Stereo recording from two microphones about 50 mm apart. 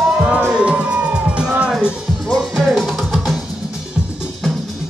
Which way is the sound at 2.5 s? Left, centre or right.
Centre.